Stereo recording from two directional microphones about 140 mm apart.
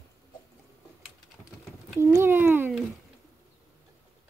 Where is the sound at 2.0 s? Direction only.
20° right (ahead or behind).